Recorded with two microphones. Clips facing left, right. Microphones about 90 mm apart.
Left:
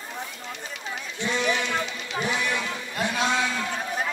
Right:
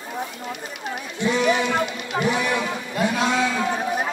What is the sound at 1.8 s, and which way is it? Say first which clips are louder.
Speech: right 6 dB; 55° right (ahead or behind).